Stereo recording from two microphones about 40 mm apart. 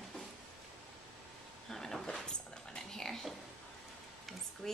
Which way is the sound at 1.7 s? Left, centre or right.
Centre.